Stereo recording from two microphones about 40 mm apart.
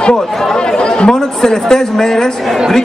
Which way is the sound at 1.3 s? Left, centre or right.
Centre.